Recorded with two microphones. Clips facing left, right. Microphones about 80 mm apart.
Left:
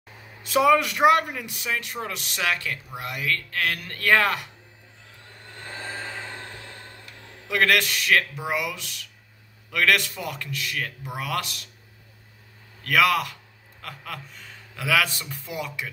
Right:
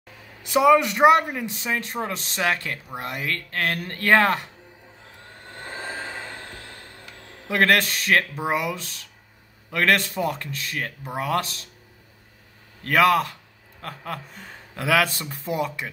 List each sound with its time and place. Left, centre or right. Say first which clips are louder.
0.5 s speech: right 2 dB; centre
7.4 s speech: right 2 dB; right
12.8 s a man's voice: right 3 dB; right